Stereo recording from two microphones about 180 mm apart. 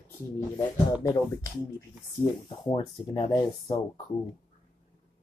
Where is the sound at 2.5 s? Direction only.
25° left (ahead or behind).